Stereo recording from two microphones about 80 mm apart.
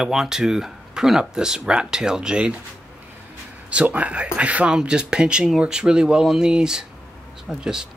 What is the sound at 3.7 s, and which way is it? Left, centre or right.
Speech, centre.